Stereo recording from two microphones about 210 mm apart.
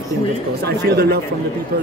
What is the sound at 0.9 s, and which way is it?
Speech, 50° right (ahead or behind).